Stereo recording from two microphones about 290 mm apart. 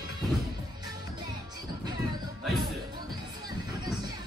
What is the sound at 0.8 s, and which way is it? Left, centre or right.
Music, centre.